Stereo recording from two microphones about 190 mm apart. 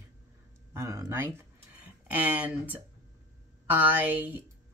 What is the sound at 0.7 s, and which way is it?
Speech, 15° right (ahead or behind).